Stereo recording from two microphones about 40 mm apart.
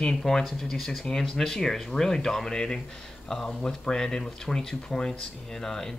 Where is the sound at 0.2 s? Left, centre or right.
Centre.